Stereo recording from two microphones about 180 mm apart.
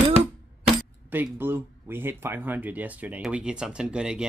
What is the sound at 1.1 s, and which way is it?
Speech, 10° right (ahead or behind).